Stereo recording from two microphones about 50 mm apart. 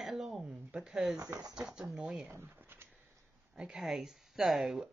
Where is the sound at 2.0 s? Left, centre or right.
Right.